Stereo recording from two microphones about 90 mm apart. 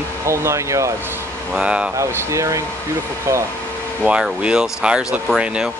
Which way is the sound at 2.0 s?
35° right (ahead or behind).